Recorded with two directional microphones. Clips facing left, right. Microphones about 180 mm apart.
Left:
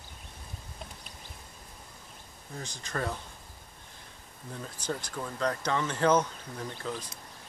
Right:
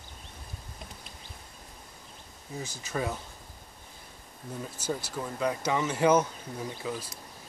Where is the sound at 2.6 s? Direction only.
5° right (ahead or behind).